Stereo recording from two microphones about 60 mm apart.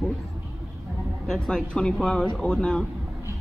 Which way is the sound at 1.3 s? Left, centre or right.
Centre.